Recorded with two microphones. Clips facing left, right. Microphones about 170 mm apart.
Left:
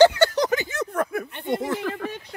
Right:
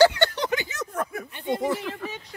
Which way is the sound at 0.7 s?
60° left (ahead or behind).